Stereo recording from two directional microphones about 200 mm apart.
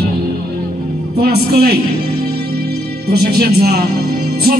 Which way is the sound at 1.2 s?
50° right (ahead or behind).